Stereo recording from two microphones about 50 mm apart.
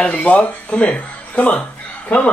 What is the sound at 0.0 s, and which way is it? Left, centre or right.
Speech, left.